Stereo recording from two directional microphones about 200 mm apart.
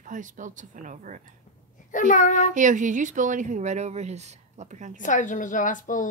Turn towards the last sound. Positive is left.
turn(degrees=40)  # may be behind; listen again after turning